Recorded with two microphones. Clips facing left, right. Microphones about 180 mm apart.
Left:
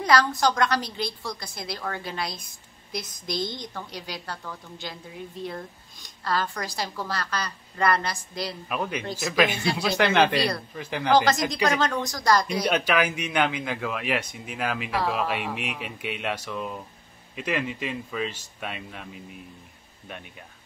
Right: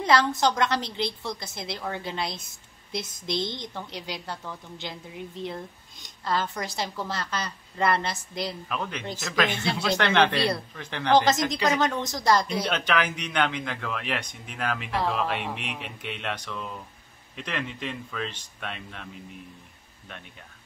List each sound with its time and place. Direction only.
0.0 s a woman's voice: 25° right (ahead or behind)
8.6 s speech: 10° left (ahead or behind)
11.3 s speech: 15° left (ahead or behind)
11.8 s a woman's voice: 20° right (ahead or behind)
12.6 s speech: 10° left (ahead or behind)